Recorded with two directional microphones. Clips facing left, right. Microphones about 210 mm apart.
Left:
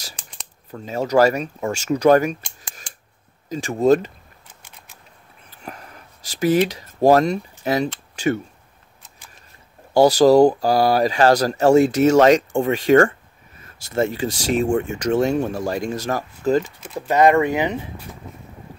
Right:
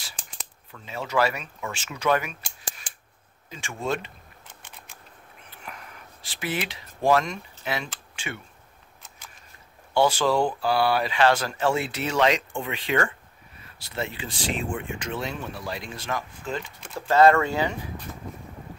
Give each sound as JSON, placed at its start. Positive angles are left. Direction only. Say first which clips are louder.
{"t": 0.7, "sound": "speech", "louder": "left 10 dB", "side_deg": 40}
{"t": 3.4, "sound": "speech", "louder": "left 13 dB", "side_deg": 40}
{"t": 5.5, "sound": "a sound", "louder": "left 6 dB", "side_deg": 35}
{"t": 8.2, "sound": "speech", "louder": "left 16 dB", "side_deg": 40}
{"t": 9.9, "sound": "speech", "louder": "left 10 dB", "side_deg": 40}
{"t": 16.9, "sound": "speech", "louder": "left 3 dB", "side_deg": 15}